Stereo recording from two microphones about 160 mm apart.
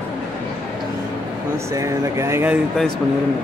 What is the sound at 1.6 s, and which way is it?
Speech, 20° right (ahead or behind).